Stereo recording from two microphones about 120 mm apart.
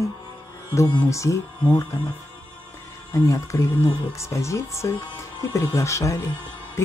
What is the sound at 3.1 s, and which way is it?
Speech, 25° left (ahead or behind).